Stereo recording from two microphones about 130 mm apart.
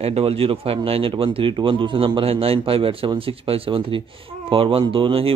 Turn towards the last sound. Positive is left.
turn(degrees=-45)  # may be behind; listen again after turning